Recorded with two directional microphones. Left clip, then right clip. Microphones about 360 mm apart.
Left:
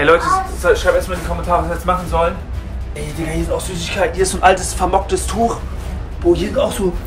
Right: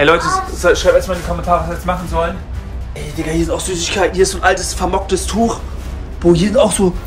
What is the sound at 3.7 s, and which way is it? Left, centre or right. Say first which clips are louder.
Speech: right 3 dB; centre.